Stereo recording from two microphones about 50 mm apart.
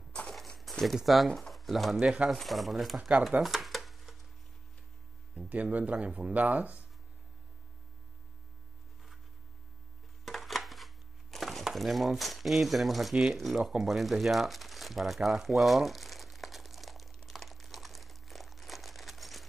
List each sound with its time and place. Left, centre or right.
0.6 s a sound: centre
0.9 s speech: centre
1.5 s pigeon: centre
2.0 s speech: right
2.3 s speech: centre
3.3 s a sound: centre
5.5 s speech: right
10.2 s a sound: centre
13.1 s speech: centre
17.3 s crumpling: centre